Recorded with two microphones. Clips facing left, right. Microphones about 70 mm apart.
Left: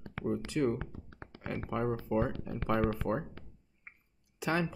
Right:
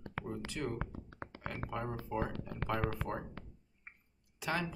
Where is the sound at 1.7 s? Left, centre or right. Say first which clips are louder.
Left 8 dB; left.